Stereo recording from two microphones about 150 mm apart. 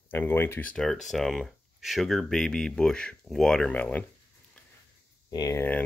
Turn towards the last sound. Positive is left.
turn(degrees=15)  # may be behind; listen again after turning